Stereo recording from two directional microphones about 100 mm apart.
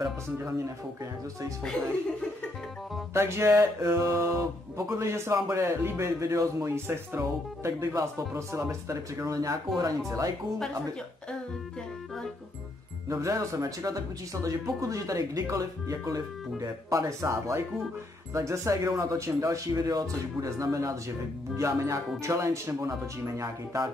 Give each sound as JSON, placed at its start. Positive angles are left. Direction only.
{"t": 3.1, "sound": "a sound", "side_deg": -25}
{"t": 7.2, "sound": "speech", "side_deg": -35}
{"t": 13.1, "sound": "speech", "side_deg": -30}